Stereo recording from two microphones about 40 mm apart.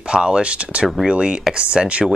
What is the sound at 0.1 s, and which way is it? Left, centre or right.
Speech, right.